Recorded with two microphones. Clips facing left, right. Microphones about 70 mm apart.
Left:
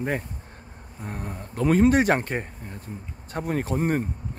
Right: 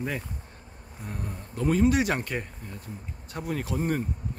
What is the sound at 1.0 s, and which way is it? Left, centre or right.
Speech, left.